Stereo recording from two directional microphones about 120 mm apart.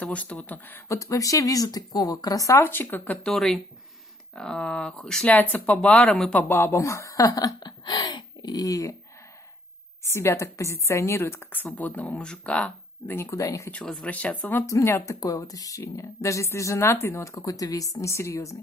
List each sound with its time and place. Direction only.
0.0 s a woman's voice: 10° left (ahead or behind)
3.3 s speech: 5° left (ahead or behind)
6.5 s speech: 20° left (ahead or behind)
10.0 s a woman's voice: 25° left (ahead or behind)
13.7 s a woman's voice: 10° left (ahead or behind)